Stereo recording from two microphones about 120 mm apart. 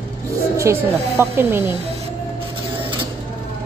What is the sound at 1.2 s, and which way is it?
Speech, 20° right (ahead or behind).